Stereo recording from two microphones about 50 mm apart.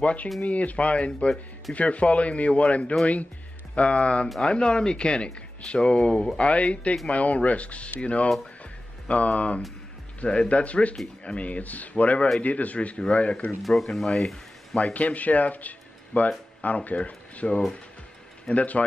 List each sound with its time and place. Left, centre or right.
0.0 s speech: left
13.6 s speech: centre
14.8 s speech: left